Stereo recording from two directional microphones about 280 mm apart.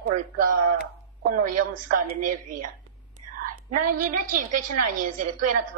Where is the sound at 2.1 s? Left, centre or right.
Right.